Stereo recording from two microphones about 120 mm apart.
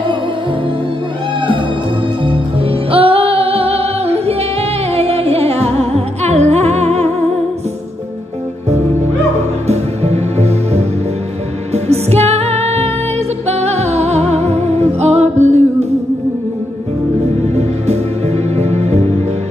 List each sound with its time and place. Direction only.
2.2 s music: 50° right (ahead or behind); by 7.1 s 65° right (ahead or behind)
8.6 s music: 65° right (ahead or behind)
17.4 s music: 65° right (ahead or behind)